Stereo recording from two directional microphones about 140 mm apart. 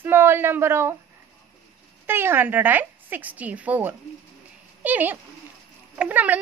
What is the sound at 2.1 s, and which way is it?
A woman's voice, 15° right (ahead or behind).